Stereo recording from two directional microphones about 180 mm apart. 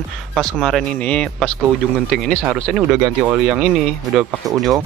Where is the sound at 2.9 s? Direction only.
10° right (ahead or behind).